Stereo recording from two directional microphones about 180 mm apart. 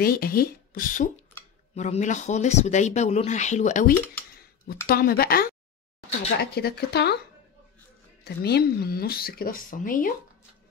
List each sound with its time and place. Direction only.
0.0 s speech: 55° left (ahead or behind)
4.8 s speech: 55° left (ahead or behind)
8.2 s speech: 60° left (ahead or behind)